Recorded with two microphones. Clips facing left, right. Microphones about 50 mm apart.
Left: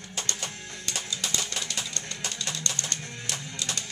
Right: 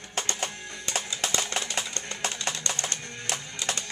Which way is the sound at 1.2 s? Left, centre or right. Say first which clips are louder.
Right 3 dB; right.